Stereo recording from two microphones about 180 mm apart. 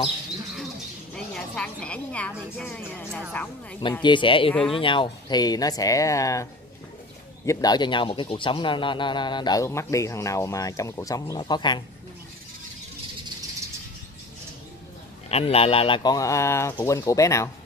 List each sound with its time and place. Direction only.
1.1 s a woman's voice: 5° left (ahead or behind)
3.9 s speech: 25° left (ahead or behind)
15.2 s a woman's voice: 35° left (ahead or behind); by 17.5 s 15° left (ahead or behind)